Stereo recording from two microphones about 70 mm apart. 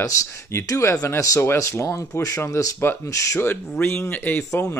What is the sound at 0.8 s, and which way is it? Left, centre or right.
Speech, left.